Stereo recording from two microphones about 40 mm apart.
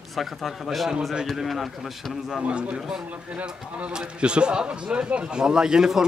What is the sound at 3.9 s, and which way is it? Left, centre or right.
A man's voice, right.